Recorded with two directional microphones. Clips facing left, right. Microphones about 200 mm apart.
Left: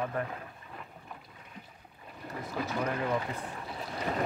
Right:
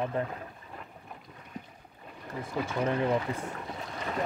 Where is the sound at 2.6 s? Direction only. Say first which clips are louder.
Right 4 dB; 25° right (ahead or behind).